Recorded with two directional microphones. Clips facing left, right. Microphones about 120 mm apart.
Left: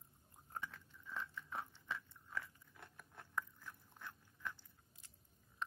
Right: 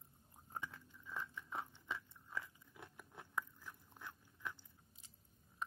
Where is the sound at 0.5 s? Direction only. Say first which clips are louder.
Even; 15° right (ahead or behind).